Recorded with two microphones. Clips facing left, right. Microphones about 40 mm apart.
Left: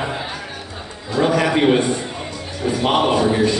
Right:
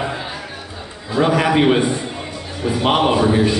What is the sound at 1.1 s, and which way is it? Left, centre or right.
A man's voice, centre.